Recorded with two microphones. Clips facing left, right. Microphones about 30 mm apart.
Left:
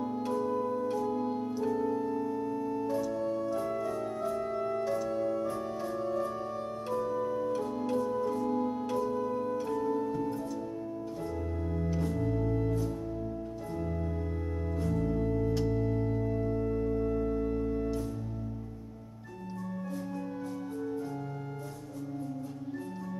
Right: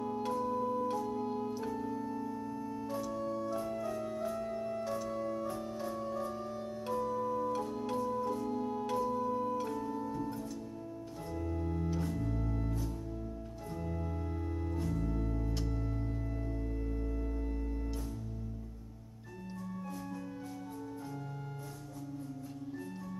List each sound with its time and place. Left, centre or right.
0.4 s organ: centre
1.5 s keyboard: centre
1.8 s organ: centre
2.9 s music: centre
3.4 s organ: centre
4.8 s music: centre
7.5 s organ: centre
9.3 s music: centre
11.2 s organ: centre
11.9 s music: centre
12.2 s music: centre
13.7 s music: centre